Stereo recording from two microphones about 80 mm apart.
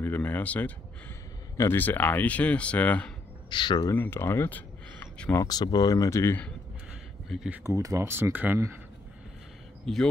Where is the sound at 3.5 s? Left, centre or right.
Left.